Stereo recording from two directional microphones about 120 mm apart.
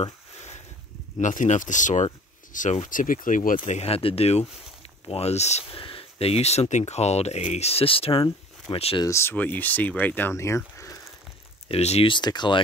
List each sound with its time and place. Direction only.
0.0 s a sound: 70° left (ahead or behind)
1.1 s speech: 90° left; by 8.3 s 50° left (ahead or behind)
8.9 s speech: 25° left (ahead or behind)
9.3 s speech: 15° left (ahead or behind)
11.7 s speech: 60° left (ahead or behind)
12.1 s speech: 40° left (ahead or behind)